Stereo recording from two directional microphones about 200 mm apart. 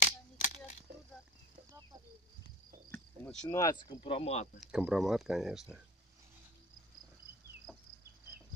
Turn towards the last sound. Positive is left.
turn(degrees=0)  # may be behind; listen again after turning